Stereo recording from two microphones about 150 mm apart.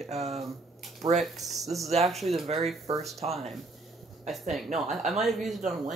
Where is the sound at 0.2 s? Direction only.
Centre (ahead or behind).